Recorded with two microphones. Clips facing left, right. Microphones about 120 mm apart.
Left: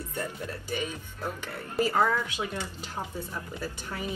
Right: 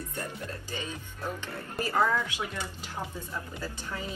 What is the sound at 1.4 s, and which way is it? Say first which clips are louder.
Speech: left 5 dB; 15° left (ahead or behind).